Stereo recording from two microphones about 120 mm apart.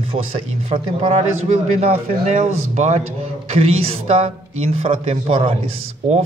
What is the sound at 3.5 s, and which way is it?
Speech, 60° right (ahead or behind).